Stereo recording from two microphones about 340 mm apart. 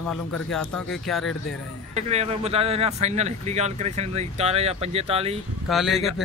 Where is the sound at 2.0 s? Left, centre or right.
Centre.